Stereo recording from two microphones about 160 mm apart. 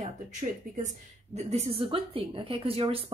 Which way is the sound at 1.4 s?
40° right (ahead or behind).